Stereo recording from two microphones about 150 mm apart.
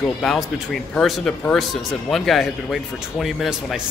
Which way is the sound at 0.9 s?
5° left (ahead or behind).